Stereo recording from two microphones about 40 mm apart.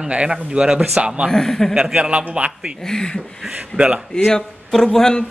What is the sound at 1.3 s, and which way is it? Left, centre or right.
Speech, centre.